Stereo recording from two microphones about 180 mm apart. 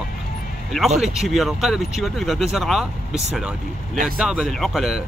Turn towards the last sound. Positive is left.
turn(degrees=0)  # may be behind; listen again after turning